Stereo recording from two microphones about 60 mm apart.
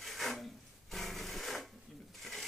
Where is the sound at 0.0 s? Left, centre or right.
Centre.